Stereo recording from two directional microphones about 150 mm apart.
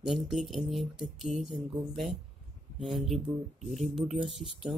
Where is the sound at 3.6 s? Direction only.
45° right (ahead or behind).